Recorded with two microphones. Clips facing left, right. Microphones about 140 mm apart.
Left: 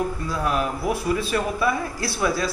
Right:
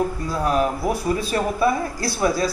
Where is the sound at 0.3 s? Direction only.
35° right (ahead or behind).